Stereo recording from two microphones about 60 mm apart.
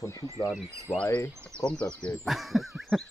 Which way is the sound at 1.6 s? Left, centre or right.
Centre.